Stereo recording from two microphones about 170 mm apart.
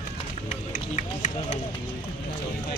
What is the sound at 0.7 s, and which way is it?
Run, 45° left (ahead or behind).